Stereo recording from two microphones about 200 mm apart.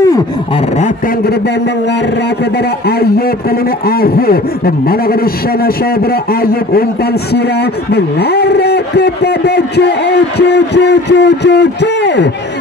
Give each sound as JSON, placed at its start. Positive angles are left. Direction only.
{"t": 4.0, "sound": "a man's voice", "side_deg": 50}
{"t": 7.9, "sound": "a man's voice", "side_deg": 55}